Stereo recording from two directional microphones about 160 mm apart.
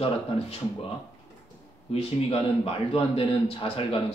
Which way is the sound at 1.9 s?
35° left (ahead or behind).